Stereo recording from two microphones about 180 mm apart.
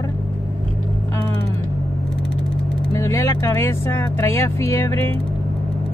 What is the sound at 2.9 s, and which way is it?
Speech, 15° left (ahead or behind).